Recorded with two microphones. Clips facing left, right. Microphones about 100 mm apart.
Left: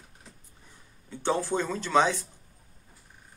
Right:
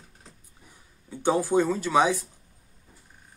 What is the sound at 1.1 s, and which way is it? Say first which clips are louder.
Speech: right 4 dB; 15° right (ahead or behind).